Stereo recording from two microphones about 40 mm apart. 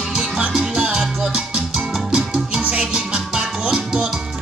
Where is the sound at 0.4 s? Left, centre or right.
Right.